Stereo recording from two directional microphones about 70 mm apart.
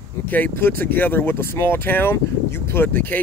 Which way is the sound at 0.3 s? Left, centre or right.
Left.